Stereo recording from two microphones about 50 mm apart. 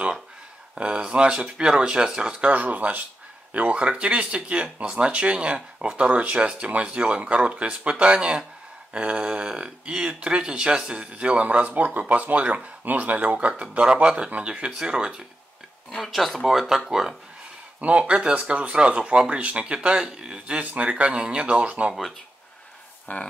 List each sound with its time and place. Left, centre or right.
0.7 s speech: right
2.5 s speech: right
16.0 s speech: centre
17.7 s speech: right
23.1 s a sound: left